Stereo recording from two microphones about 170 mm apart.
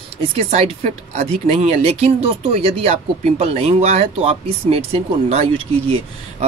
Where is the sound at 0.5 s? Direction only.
40° right (ahead or behind).